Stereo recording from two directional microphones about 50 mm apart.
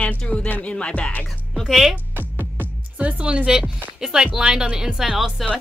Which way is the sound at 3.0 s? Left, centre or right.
Right.